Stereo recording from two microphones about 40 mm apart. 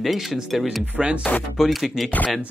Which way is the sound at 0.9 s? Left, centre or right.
Right.